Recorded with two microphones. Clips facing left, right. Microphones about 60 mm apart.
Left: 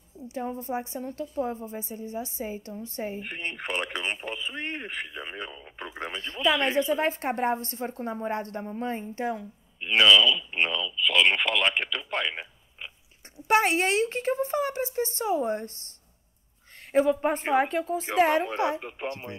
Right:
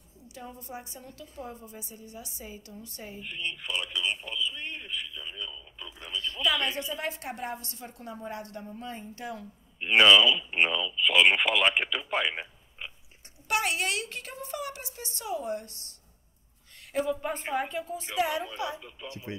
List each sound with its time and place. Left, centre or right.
0.3 s a woman's voice: left
3.2 s speech: left
6.2 s a woman's voice: left
9.8 s speech: centre
13.5 s a woman's voice: left
16.9 s a woman's voice: left